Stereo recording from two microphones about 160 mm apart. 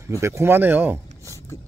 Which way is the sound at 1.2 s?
20° left (ahead or behind).